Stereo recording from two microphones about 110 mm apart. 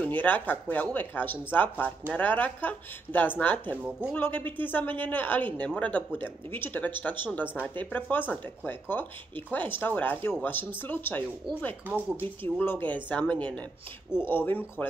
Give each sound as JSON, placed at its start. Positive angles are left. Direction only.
{"t": 0.0, "sound": "speech", "side_deg": 15}
{"t": 7.4, "sound": "speech", "side_deg": -10}
{"t": 7.7, "sound": "speech", "side_deg": 15}